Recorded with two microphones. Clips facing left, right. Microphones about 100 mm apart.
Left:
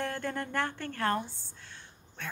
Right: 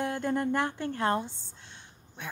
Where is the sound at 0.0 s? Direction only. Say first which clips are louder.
Right 5 dB; 20° right (ahead or behind).